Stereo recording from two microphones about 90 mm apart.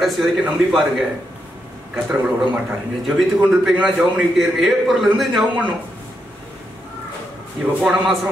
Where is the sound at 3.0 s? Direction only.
Centre (ahead or behind).